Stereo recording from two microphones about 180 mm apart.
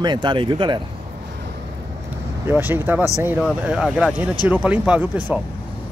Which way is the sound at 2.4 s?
10° right (ahead or behind).